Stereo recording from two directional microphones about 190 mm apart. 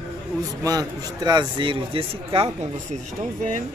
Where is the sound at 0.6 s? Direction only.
20° right (ahead or behind).